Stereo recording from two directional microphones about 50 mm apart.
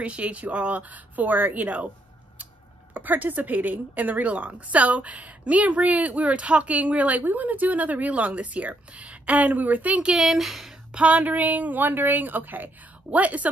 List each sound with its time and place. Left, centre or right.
0.0 s speech: right
2.9 s a woman's voice: right
10.2 s speech: centre
11.0 s a woman's voice: right